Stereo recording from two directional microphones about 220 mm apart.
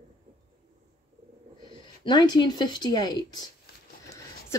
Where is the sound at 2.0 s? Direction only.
20° left (ahead or behind).